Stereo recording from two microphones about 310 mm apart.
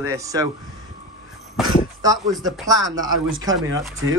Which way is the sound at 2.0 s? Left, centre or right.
Centre.